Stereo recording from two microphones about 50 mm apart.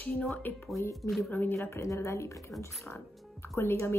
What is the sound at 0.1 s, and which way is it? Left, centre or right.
A woman's voice, centre.